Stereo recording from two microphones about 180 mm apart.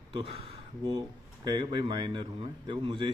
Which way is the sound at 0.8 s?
25° right (ahead or behind).